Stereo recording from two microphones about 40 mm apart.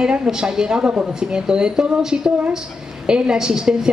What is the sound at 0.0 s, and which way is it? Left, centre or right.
Speech, right.